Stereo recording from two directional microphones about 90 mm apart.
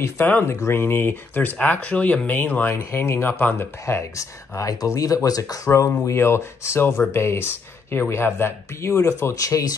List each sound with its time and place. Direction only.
0.3 s speech: 20° left (ahead or behind); by 5.6 s 40° left (ahead or behind)
6.0 s speech: 30° left (ahead or behind)